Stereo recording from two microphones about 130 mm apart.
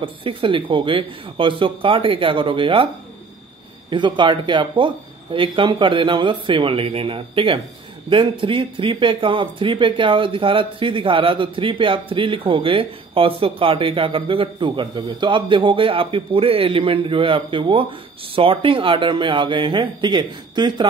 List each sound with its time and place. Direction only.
0.0 s speech: 40° right (ahead or behind)
3.9 s speech: 35° right (ahead or behind)